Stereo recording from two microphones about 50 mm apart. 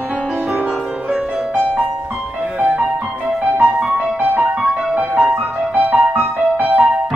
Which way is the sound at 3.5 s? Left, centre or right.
Right.